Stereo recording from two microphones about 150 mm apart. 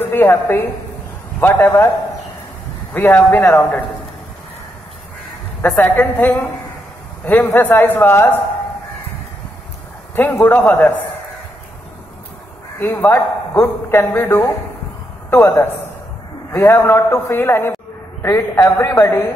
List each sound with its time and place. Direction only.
0.0 s a man's voice: 15° left (ahead or behind)
2.9 s a man's voice: 15° left (ahead or behind)
5.6 s a man's voice: 10° left (ahead or behind)
10.1 s a man's voice: 10° left (ahead or behind)
12.8 s a man's voice: 20° left (ahead or behind)